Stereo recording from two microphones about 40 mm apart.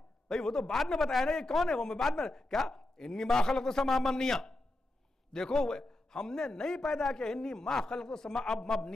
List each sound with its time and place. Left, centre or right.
0.3 s a man's voice: centre